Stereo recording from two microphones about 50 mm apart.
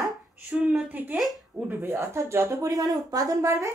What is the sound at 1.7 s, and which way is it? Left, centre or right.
Speech, right.